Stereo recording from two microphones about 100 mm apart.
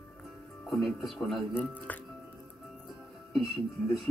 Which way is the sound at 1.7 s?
15° left (ahead or behind).